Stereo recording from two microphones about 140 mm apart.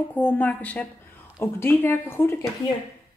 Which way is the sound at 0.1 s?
10° left (ahead or behind).